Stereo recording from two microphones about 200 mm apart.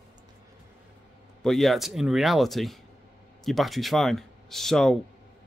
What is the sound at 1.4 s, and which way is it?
Speech, centre (ahead or behind).